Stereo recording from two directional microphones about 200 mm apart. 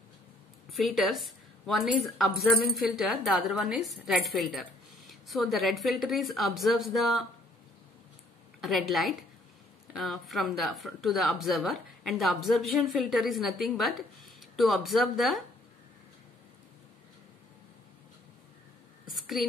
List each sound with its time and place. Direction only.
0.7 s a woman's voice: centre (ahead or behind)
8.5 s a woman's voice: centre (ahead or behind)
19.0 s a sound: centre (ahead or behind)